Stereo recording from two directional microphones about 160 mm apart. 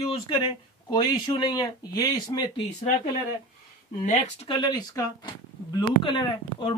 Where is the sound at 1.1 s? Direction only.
30° left (ahead or behind).